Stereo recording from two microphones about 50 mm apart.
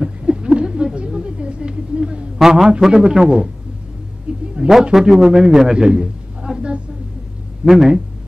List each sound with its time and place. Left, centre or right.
0.0 s a sound: centre
2.3 s a man's voice: centre
4.6 s a man's voice: centre
7.6 s speech: centre